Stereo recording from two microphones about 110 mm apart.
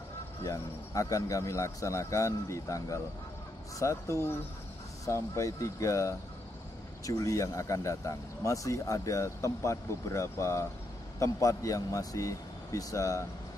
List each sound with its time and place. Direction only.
0.4 s speech: 30° left (ahead or behind)